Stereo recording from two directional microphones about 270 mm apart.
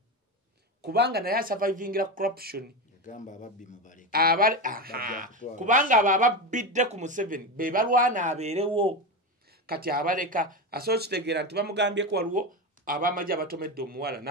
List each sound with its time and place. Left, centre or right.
0.8 s speech: right
3.0 s a man's voice: left
4.1 s speech: right
9.5 s speech: right